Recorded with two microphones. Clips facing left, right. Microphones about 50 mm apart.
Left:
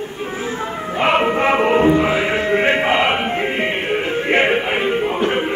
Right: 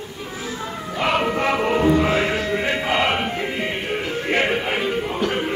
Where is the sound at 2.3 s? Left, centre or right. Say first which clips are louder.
Left 6 dB; left.